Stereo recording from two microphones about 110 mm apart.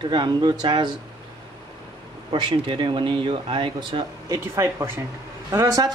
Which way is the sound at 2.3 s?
50° right (ahead or behind).